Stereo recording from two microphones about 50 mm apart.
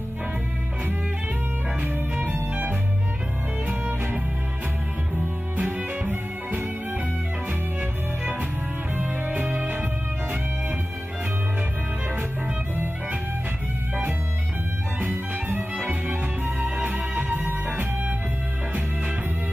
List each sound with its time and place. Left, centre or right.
1.8 s music: right
8.9 s music: right
12.7 s music: right
15.0 s music: right
15.7 s music: centre
16.5 s music: right